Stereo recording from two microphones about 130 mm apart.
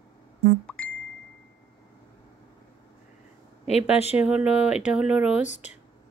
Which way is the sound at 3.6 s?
55° left (ahead or behind).